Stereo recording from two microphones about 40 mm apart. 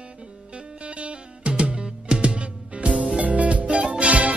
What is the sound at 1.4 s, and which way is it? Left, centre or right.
Music, right.